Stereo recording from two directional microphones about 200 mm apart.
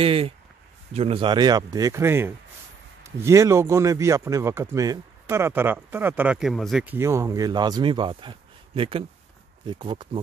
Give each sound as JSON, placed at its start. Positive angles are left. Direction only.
{"t": 0.0, "sound": "a man's voice", "side_deg": -30}